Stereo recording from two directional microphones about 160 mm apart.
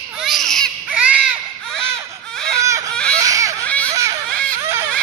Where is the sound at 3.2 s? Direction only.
20° right (ahead or behind).